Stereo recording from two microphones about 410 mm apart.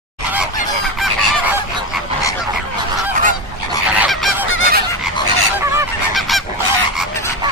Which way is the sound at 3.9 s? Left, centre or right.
Centre.